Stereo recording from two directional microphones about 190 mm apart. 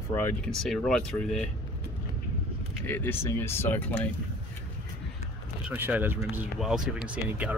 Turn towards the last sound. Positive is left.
turn(degrees=-5)  # may be behind; listen again after turning